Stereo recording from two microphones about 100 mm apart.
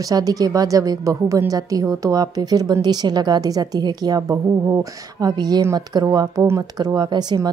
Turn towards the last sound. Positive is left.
turn(degrees=-45)  # may be behind; listen again after turning